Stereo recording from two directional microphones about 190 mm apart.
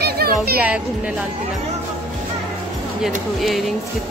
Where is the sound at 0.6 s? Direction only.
5° right (ahead or behind).